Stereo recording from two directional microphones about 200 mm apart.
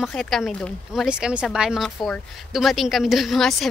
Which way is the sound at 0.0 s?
Centre (ahead or behind).